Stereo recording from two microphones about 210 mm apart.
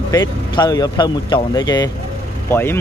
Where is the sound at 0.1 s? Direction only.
20° left (ahead or behind).